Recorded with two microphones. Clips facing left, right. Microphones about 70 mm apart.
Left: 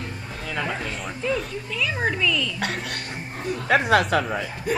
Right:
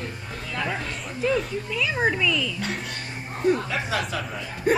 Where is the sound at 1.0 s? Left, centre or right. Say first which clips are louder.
Right 4 dB; centre.